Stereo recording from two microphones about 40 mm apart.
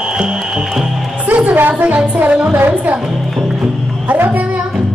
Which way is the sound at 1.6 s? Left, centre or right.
Right.